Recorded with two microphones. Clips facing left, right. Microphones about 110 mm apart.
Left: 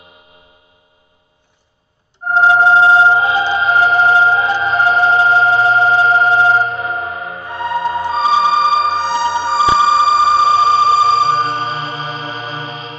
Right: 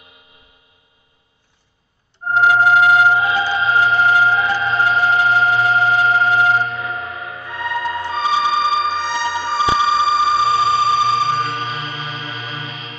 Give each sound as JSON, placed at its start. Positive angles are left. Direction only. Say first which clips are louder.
{"t": 2.2, "sound": "organ", "louder": "left 3 dB", "side_deg": 30}